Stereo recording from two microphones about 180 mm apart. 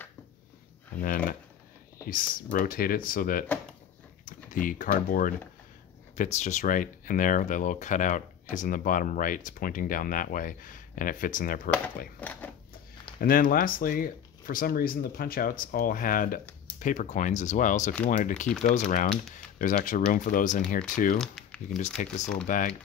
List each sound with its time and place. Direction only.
0.9 s a sound: 50° left (ahead or behind)
2.0 s speech: 50° left (ahead or behind)
12.2 s speech: 10° left (ahead or behind)
13.2 s speech: 50° left (ahead or behind)
21.2 s a sound: centre (ahead or behind)
21.9 s speech: 40° left (ahead or behind)